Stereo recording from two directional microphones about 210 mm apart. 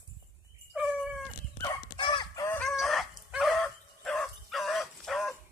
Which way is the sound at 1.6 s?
20° left (ahead or behind).